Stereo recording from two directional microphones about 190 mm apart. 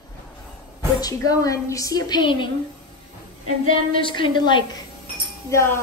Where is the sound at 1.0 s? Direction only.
20° left (ahead or behind).